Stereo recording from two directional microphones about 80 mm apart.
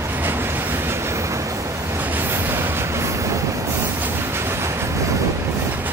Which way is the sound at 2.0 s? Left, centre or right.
Right.